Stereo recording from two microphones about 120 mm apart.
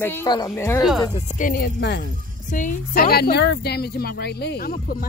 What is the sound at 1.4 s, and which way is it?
Speech, 90° left.